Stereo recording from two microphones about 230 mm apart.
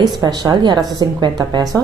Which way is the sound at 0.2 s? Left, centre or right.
Centre.